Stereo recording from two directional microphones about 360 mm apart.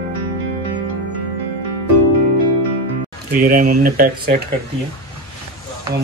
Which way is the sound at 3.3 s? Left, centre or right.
Right.